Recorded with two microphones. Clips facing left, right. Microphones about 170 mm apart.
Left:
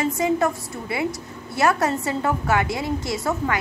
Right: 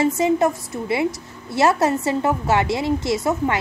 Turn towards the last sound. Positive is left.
turn(degrees=-20)  # may be behind; listen again after turning